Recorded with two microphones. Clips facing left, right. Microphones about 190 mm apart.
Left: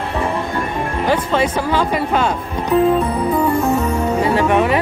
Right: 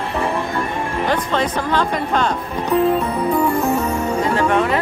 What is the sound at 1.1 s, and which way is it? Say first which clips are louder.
Speech: left 4 dB; 10° left (ahead or behind).